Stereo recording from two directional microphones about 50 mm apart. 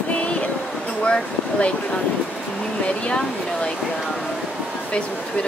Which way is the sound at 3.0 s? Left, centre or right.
Centre.